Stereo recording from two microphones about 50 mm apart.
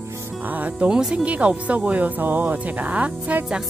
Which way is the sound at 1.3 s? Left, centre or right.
Right.